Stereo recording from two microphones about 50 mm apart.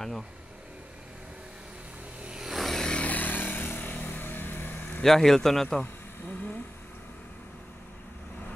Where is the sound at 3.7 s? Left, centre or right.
Left.